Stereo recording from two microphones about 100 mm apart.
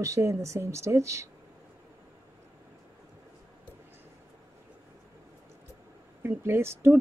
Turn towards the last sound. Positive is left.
turn(degrees=-25)  # may be behind; listen again after turning